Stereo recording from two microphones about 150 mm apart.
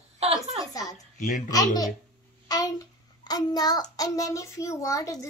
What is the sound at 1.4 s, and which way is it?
A woman's voice, 25° left (ahead or behind).